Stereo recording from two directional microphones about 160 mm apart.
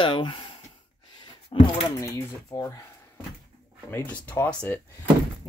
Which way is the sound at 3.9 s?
10° left (ahead or behind).